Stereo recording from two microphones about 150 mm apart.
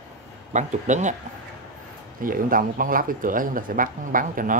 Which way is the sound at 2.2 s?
70° right (ahead or behind).